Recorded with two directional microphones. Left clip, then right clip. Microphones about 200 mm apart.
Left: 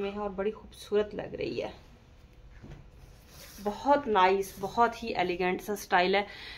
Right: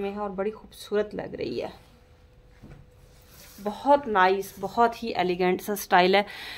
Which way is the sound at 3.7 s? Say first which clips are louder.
Right 4 dB; 25° right (ahead or behind).